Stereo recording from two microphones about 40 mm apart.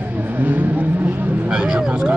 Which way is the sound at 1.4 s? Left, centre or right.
Right.